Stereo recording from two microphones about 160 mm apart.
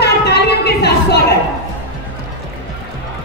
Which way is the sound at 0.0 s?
90° left.